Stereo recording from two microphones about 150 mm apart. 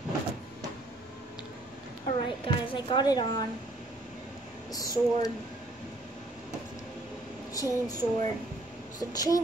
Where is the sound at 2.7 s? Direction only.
30° left (ahead or behind).